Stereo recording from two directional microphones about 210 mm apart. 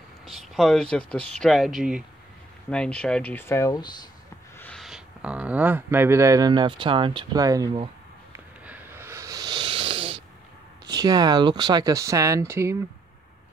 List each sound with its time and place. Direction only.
0.2 s speech: centre (ahead or behind); by 3.9 s 15° left (ahead or behind)
4.6 s speech: 5° left (ahead or behind); by 7.7 s 15° right (ahead or behind)
8.6 s a sound: 10° right (ahead or behind); by 10.2 s 25° right (ahead or behind)
10.9 s speech: 20° right (ahead or behind)